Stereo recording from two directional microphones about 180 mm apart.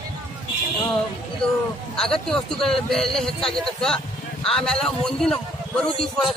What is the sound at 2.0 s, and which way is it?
A man's voice, 5° left (ahead or behind).